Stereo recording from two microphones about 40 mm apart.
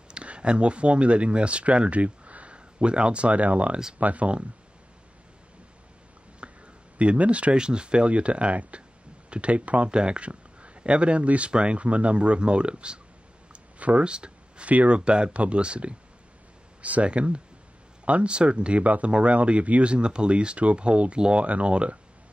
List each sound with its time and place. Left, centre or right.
0.1 s speech: right
6.4 s a sound: right
7.0 s speech: right
13.5 s clicking: right
14.0 s speech: right
19.9 s speech: right